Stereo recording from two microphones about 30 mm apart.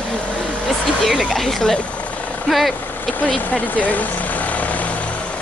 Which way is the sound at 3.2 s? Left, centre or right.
Left.